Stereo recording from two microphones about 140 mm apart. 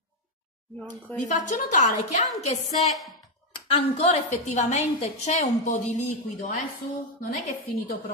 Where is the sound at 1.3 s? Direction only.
65° left (ahead or behind).